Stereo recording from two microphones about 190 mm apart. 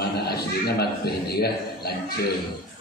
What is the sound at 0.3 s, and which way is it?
A man's voice, 55° left (ahead or behind).